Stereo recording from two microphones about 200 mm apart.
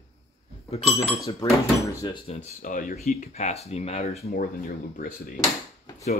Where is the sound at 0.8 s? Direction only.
Centre (ahead or behind).